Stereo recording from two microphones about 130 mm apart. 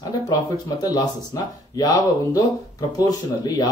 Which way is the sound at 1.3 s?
30° left (ahead or behind).